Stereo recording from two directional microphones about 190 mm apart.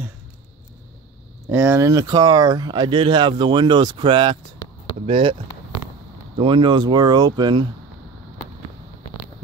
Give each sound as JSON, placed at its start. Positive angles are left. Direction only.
{"t": 1.5, "sound": "speech", "side_deg": -10}
{"t": 6.3, "sound": "speech", "side_deg": -25}